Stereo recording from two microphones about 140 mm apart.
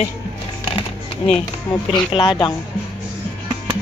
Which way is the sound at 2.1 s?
35° left (ahead or behind).